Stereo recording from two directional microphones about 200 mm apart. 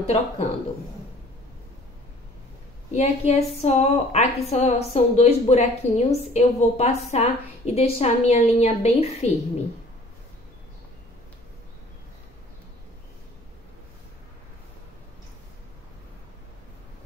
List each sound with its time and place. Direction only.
0.0 s a woman's voice: 30° left (ahead or behind)
2.9 s a woman's voice: 30° left (ahead or behind)